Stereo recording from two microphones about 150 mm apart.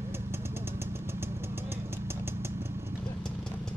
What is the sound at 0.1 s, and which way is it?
Vehicle, 15° right (ahead or behind).